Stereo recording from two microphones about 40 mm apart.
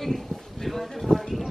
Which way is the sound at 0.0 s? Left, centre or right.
Centre.